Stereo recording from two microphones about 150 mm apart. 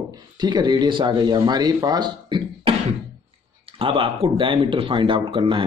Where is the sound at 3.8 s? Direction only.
35° right (ahead or behind).